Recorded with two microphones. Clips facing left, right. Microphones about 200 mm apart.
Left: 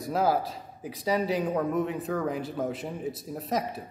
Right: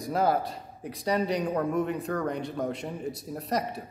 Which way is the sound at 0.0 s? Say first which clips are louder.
Even; centre (ahead or behind).